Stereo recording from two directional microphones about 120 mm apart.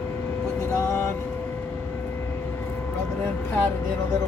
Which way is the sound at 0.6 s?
20° left (ahead or behind).